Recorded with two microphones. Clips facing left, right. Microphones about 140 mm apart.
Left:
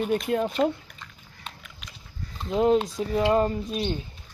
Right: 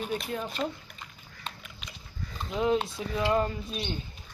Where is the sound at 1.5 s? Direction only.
10° left (ahead or behind).